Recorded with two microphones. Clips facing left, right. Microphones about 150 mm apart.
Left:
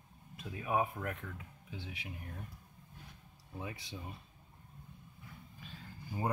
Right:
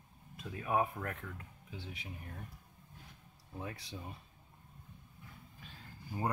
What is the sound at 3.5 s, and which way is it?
Speech, centre (ahead or behind).